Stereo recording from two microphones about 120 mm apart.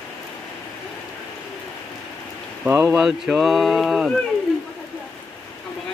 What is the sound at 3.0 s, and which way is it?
Speech, 5° right (ahead or behind).